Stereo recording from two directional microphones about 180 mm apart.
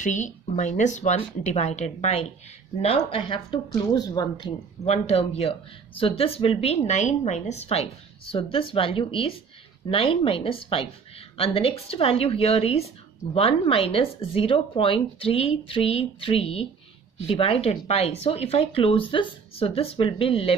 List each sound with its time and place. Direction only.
0.0 s a woman's voice: 45° left (ahead or behind); by 4.5 s 20° left (ahead or behind)
4.8 s a woman's voice: 35° left (ahead or behind)